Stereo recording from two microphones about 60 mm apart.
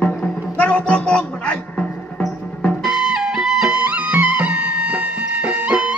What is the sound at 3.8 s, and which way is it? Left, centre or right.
Music, right.